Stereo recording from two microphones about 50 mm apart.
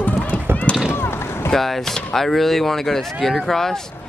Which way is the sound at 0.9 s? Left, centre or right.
Left.